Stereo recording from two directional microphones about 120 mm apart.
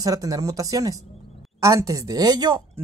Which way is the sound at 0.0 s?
30° right (ahead or behind).